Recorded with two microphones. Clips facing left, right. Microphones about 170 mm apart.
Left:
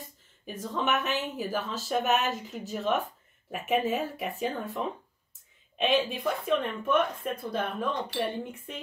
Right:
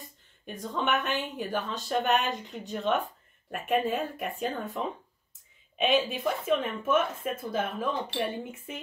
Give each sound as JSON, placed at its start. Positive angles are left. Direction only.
{"t": 0.5, "sound": "speech", "side_deg": 0}